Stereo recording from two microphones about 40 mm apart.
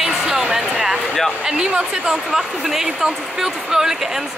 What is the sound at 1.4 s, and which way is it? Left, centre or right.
Speech, right.